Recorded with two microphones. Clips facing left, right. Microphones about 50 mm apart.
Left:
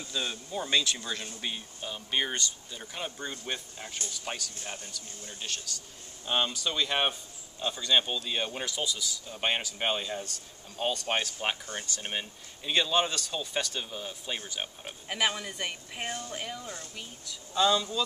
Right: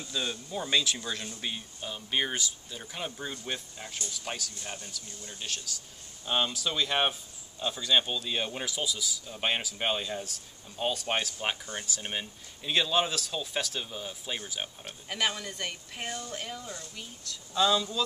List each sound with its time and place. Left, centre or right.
0.1 s speech: centre
12.0 s speech: centre
16.6 s speech: left
16.9 s speech: centre